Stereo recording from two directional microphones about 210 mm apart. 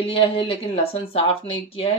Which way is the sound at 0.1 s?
25° left (ahead or behind).